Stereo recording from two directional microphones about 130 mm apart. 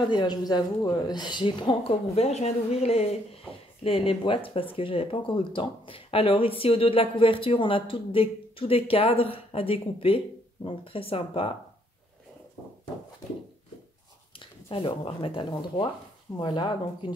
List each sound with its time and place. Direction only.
0.1 s a woman's voice: 35° left (ahead or behind)
2.1 s speech: 55° left (ahead or behind)
14.7 s a woman's voice: 45° left (ahead or behind)